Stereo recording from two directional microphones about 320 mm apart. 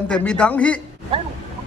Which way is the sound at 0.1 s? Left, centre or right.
Centre.